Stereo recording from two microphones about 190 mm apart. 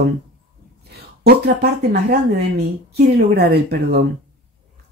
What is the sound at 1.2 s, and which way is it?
Speech, 55° right (ahead or behind).